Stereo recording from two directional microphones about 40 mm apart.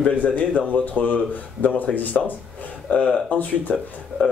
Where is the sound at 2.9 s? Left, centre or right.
Left.